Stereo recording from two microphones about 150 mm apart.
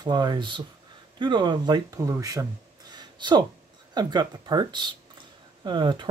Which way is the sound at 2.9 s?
30° right (ahead or behind).